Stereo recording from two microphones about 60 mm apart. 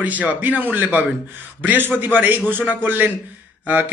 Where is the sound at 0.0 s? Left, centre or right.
Right.